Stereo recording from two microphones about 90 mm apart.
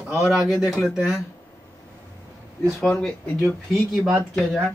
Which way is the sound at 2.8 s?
10° left (ahead or behind).